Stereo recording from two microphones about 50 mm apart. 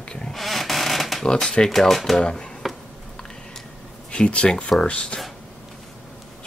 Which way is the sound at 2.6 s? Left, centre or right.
Centre.